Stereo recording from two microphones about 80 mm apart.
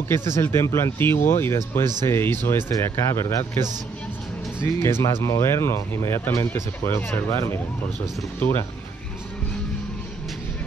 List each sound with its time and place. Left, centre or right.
0.1 s speech: left
5.0 s speech: left